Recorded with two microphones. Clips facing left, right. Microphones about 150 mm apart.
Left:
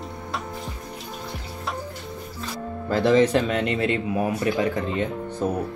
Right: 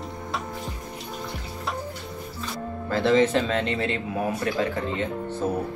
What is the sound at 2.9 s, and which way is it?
Speech, 15° left (ahead or behind).